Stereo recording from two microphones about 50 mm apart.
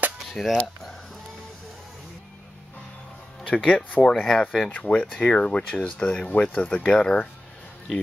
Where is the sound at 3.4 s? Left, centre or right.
Left.